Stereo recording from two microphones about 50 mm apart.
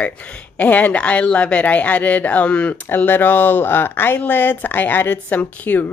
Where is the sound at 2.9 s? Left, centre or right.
Left.